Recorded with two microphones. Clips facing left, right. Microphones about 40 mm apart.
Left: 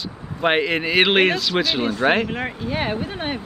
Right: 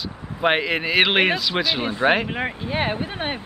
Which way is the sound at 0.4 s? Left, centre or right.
Centre.